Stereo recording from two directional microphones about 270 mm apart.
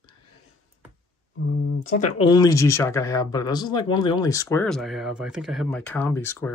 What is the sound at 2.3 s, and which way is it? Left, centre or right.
Speech, centre.